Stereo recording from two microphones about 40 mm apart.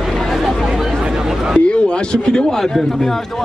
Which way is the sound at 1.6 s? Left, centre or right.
Left.